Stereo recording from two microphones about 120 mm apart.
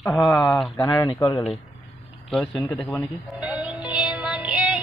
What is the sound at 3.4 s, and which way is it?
Music, 10° right (ahead or behind).